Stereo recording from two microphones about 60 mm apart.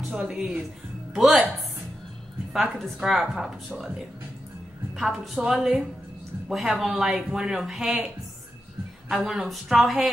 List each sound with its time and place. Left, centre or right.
0.1 s speech: centre
2.5 s speech: centre
9.1 s speech: centre